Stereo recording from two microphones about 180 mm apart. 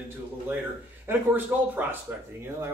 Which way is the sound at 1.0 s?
10° right (ahead or behind).